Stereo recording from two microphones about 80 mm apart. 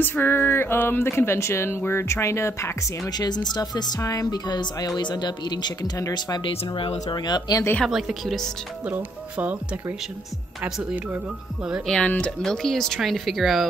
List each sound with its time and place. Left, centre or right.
0.0 s speech: left
3.1 s speech: left
4.0 s speech: left
6.1 s speech: left
7.9 s speech: centre
8.8 s speech: right
11.8 s speech: centre